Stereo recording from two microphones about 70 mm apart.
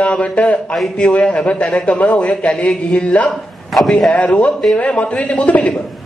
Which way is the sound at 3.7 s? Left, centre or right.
Centre.